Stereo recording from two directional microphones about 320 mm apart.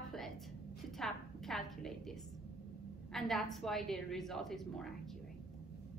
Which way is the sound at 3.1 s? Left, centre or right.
Centre.